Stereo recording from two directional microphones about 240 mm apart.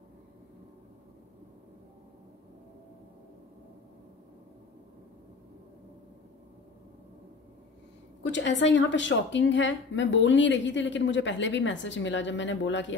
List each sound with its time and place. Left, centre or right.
8.2 s a woman's voice: left